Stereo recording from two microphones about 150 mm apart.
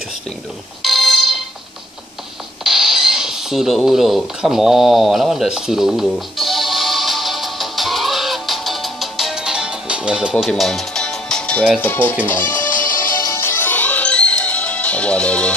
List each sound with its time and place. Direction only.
0.8 s a sound: centre (ahead or behind)
2.6 s a sound: centre (ahead or behind)
10.4 s music: centre (ahead or behind)
11.9 s speech: 10° left (ahead or behind)
12.6 s music: 65° left (ahead or behind)
13.2 s music: 20° left (ahead or behind)